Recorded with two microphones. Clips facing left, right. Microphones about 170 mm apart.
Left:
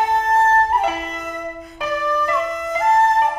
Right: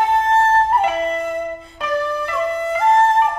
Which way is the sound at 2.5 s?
30° right (ahead or behind).